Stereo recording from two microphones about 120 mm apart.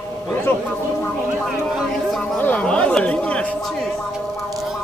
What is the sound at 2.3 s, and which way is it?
Speech, 10° left (ahead or behind).